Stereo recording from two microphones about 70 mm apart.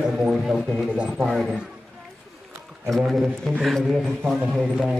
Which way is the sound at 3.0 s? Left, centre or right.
Centre.